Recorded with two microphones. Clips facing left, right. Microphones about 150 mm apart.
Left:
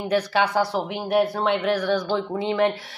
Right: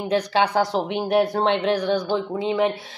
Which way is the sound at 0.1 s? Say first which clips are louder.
Right 1 dB; 25° right (ahead or behind).